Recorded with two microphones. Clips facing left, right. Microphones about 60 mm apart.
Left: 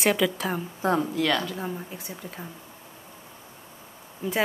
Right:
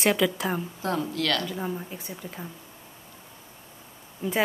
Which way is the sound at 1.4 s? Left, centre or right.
Centre.